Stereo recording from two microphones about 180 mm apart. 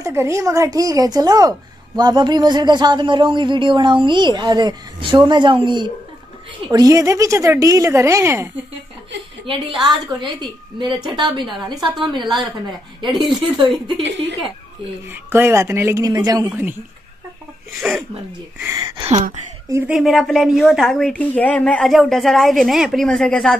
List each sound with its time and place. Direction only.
0.0 s a man's voice: 15° right (ahead or behind)
9.8 s a man's voice: 25° right (ahead or behind)
11.7 s a woman's voice: centre (ahead or behind)
15.0 s a woman's voice: 15° right (ahead or behind)
17.7 s a woman's voice: centre (ahead or behind)
18.6 s a woman's voice: 15° right (ahead or behind)
18.9 s speech: 35° right (ahead or behind)
19.9 s a woman's voice: centre (ahead or behind)